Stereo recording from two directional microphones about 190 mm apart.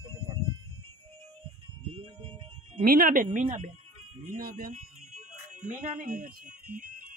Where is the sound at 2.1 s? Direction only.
30° right (ahead or behind).